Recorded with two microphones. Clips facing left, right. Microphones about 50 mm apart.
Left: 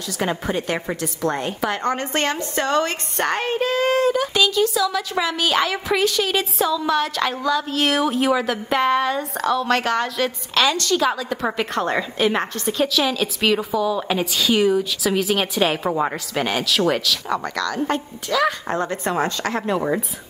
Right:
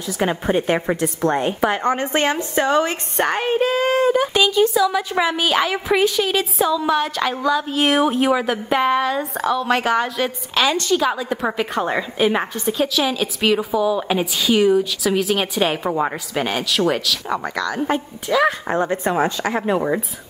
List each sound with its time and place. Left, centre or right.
0.2 s a woman's voice: centre
1.0 s a woman's voice: right
1.4 s a woman's voice: centre
10.7 s a woman's voice: centre